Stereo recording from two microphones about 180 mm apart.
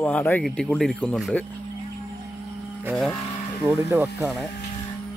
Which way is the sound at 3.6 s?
5° right (ahead or behind).